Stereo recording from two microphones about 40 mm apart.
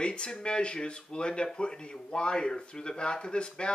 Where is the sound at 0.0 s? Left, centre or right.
Left.